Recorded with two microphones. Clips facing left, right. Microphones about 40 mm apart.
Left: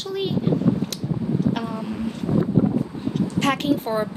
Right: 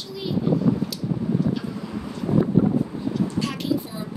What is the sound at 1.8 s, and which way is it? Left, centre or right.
Speech, left.